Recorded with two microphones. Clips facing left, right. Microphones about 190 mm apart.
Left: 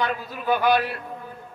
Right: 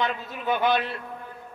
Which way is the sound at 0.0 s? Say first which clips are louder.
Left 2 dB; 20° right (ahead or behind).